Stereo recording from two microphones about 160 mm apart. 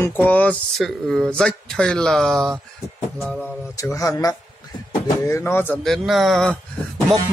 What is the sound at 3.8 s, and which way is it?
Speech, 20° left (ahead or behind).